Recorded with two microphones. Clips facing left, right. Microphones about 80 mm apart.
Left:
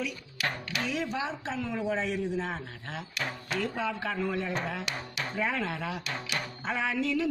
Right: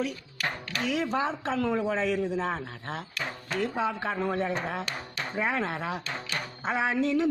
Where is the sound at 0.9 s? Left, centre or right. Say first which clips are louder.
Right 7 dB; right.